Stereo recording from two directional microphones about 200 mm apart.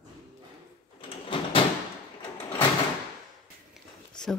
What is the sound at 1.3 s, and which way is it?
Door, 25° left (ahead or behind).